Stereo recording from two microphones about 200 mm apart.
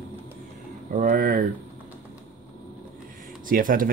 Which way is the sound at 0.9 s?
40° right (ahead or behind).